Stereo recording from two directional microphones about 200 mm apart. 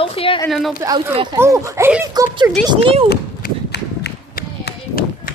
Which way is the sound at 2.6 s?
25° right (ahead or behind).